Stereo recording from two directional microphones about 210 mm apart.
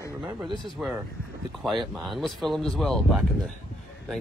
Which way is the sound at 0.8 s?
5° right (ahead or behind).